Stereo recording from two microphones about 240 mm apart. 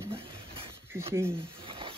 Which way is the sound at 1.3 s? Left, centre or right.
Right.